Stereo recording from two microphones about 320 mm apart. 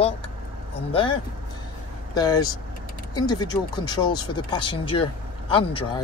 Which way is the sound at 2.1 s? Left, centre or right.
Centre.